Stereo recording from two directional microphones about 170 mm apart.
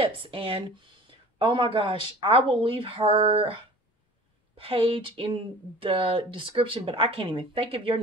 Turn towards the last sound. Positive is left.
turn(degrees=-35)  # may be behind; listen again after turning